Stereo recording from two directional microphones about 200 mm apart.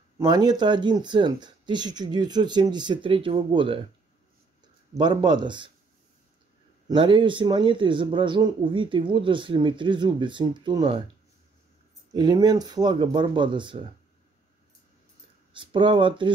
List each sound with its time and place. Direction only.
0.2 s speech: 20° right (ahead or behind)
4.9 s speech: 20° right (ahead or behind)
6.9 s speech: 25° right (ahead or behind)
12.1 s speech: 20° right (ahead or behind)
15.5 s speech: 25° right (ahead or behind)